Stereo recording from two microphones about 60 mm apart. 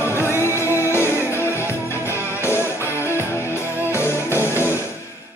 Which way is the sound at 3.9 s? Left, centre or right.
Left.